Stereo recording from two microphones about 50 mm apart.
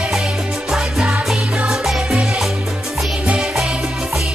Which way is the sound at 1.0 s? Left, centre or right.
Centre.